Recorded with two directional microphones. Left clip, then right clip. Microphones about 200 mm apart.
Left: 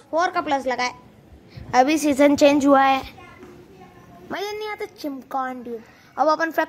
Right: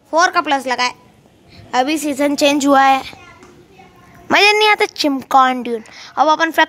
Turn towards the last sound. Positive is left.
turn(degrees=0)  # may be behind; listen again after turning